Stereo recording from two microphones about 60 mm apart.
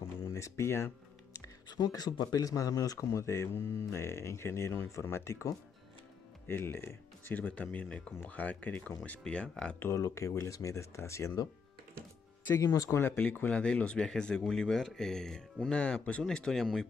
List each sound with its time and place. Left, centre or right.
0.3 s music: left
1.8 s speech: left
6.4 s speech: left; by 9.8 s centre
9.9 s speech: left
13.0 s speech: left; by 16.8 s centre